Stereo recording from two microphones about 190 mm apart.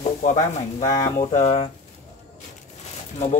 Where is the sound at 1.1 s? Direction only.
40° left (ahead or behind).